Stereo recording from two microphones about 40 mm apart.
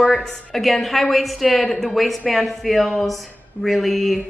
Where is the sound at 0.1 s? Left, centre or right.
Centre.